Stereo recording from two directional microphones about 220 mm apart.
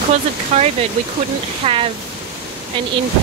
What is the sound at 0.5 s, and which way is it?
Speech, 30° right (ahead or behind).